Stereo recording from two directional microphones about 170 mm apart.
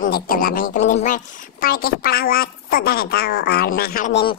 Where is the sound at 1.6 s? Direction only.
60° left (ahead or behind).